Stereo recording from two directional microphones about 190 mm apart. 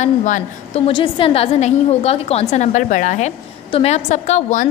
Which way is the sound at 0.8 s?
25° left (ahead or behind).